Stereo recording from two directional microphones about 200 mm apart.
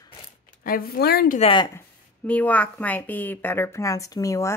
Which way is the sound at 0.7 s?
50° left (ahead or behind).